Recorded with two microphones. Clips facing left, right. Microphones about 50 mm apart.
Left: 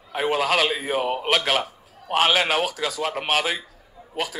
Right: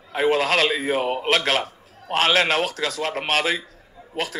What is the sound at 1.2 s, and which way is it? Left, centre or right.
A man's voice, centre.